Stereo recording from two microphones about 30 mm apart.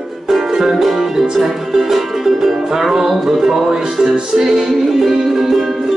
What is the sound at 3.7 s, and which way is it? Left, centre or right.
Music, centre.